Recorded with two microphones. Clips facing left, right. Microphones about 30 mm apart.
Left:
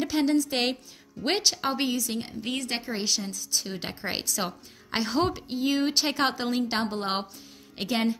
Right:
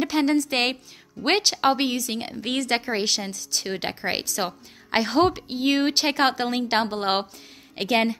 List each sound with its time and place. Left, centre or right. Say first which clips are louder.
0.0 s a sound: right 3 dB; centre
0.5 s a woman's voice: right 3 dB; right
3.9 s a woman's voice: right 4 dB; centre
6.8 s a woman's voice: right 5 dB; right